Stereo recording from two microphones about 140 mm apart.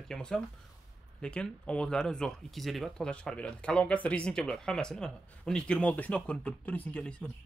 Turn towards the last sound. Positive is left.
turn(degrees=10)  # may be behind; listen again after turning